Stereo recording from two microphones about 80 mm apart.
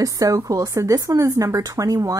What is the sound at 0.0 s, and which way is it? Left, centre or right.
Speech, right.